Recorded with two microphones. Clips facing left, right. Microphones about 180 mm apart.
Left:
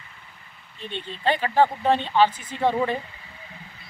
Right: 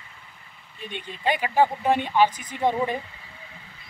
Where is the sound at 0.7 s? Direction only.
10° right (ahead or behind).